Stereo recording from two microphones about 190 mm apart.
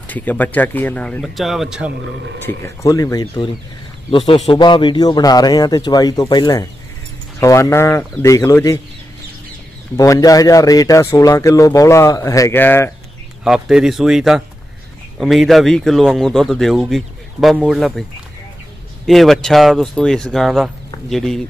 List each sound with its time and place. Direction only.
0.1 s speech: 10° left (ahead or behind)
2.4 s speech: 15° left (ahead or behind)
4.5 s speech: 25° left (ahead or behind)
9.9 s speech: 15° left (ahead or behind)
13.4 s speech: 5° right (ahead or behind)
19.0 s speech: centre (ahead or behind)